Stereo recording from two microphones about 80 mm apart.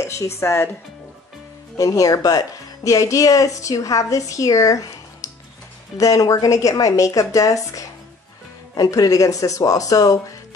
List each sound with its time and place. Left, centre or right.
0.0 s a woman's voice: left
1.8 s speech: left